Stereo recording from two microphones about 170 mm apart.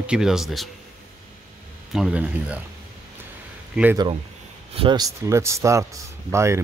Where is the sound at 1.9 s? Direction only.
5° right (ahead or behind).